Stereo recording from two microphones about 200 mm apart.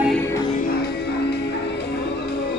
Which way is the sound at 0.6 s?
50° left (ahead or behind).